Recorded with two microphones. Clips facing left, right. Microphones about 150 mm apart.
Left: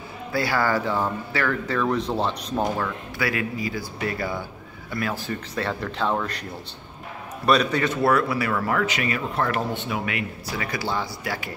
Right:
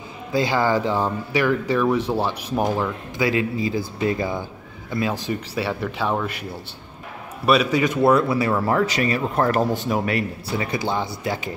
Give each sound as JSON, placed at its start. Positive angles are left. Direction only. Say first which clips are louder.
{"t": 0.3, "sound": "speech", "louder": "right 3 dB", "side_deg": -20}
{"t": 7.4, "sound": "a man's voice", "louder": "right 2 dB", "side_deg": -10}
{"t": 10.5, "sound": "speech", "louder": "right 4 dB", "side_deg": -25}